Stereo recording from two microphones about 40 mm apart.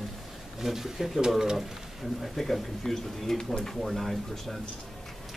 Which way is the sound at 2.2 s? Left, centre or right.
Centre.